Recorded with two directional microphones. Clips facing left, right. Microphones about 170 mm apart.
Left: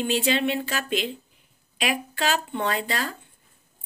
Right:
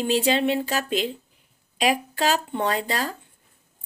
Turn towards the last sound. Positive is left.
turn(degrees=-35)  # may be behind; listen again after turning